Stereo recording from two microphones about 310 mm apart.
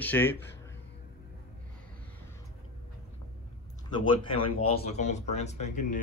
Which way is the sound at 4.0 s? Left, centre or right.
Centre.